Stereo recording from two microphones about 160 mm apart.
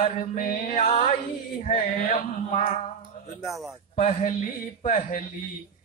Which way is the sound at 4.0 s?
45° left (ahead or behind).